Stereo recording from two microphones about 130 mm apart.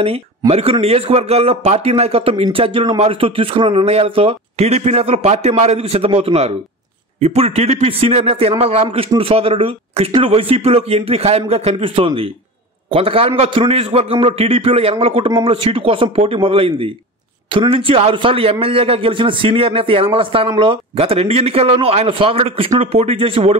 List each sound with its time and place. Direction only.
0.5 s a man's voice: 50° right (ahead or behind)